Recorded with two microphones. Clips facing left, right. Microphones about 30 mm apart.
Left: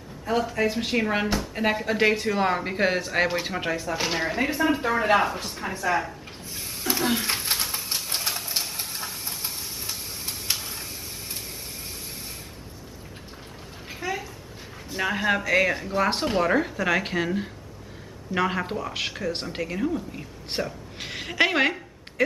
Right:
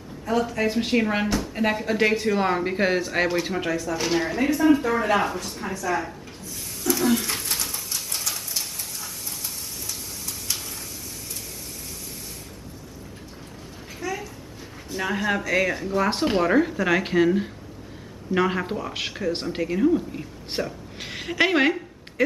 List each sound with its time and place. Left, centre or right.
0.5 s speech: centre
3.7 s speech: left
4.9 s a woman's voice: left
6.8 s a sound: left
13.9 s a sound: centre
14.9 s speech: centre